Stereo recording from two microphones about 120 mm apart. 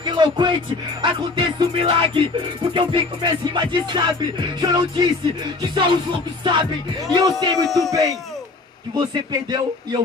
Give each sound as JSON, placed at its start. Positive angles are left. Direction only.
{"t": 0.0, "sound": "speech", "side_deg": -40}
{"t": 1.0, "sound": "music", "side_deg": -45}
{"t": 7.6, "sound": "speech", "side_deg": 0}
{"t": 8.9, "sound": "music", "side_deg": -35}